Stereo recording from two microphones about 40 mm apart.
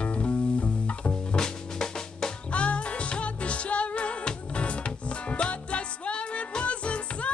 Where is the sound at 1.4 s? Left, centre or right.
Centre.